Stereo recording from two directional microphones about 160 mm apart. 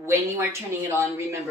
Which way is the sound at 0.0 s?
15° right (ahead or behind).